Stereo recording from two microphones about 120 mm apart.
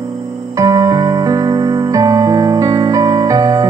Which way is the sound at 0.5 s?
30° right (ahead or behind).